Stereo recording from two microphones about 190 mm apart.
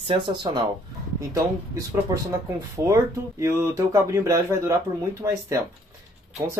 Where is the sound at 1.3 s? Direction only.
15° right (ahead or behind).